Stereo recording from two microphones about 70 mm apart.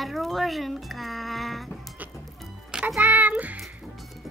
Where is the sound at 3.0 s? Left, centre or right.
Right.